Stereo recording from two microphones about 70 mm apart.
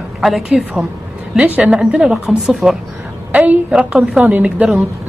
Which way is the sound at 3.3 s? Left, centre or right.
Centre.